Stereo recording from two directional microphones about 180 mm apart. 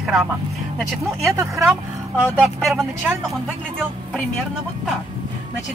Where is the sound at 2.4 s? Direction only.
Centre (ahead or behind).